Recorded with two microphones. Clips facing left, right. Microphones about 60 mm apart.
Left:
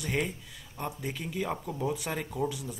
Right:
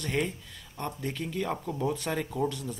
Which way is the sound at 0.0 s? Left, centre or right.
Centre.